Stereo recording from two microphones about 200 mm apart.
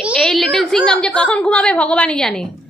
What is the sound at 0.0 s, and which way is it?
A woman's voice, centre (ahead or behind).